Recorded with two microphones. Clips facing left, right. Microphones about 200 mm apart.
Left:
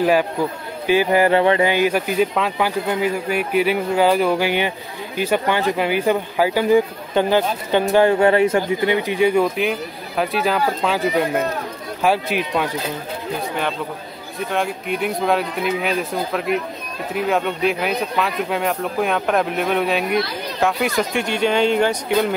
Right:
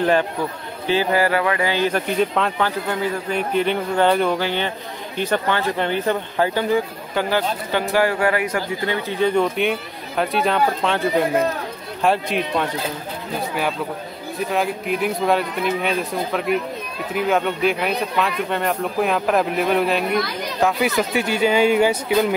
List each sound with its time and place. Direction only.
0.0 s speech: 10° left (ahead or behind)
0.8 s music: 15° left (ahead or behind)
1.7 s speech: 10° left (ahead or behind)
14.5 s speech: centre (ahead or behind)